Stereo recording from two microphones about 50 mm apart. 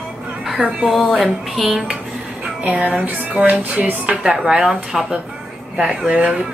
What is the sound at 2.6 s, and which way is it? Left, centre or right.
Music, right.